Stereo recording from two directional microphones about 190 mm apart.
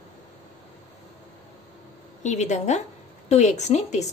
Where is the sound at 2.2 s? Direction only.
35° left (ahead or behind).